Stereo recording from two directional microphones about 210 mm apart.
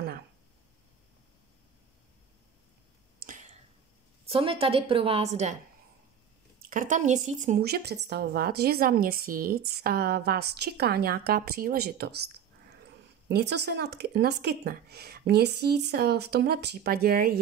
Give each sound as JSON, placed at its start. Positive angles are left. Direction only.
{"t": 3.3, "sound": "a sound", "side_deg": -35}
{"t": 4.3, "sound": "a woman's voice", "side_deg": -25}
{"t": 6.7, "sound": "a woman's voice", "side_deg": -40}
{"t": 13.3, "sound": "a woman's voice", "side_deg": -55}